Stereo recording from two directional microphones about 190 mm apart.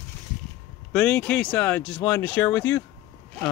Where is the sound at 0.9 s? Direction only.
5° left (ahead or behind).